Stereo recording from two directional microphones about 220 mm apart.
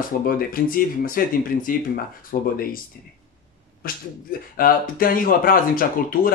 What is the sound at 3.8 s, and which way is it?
Speech, 40° left (ahead or behind).